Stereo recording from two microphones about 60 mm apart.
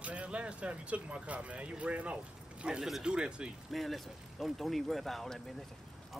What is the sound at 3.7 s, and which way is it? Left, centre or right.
Speech, centre.